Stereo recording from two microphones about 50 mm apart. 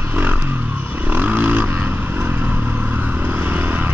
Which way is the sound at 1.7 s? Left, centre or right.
Right.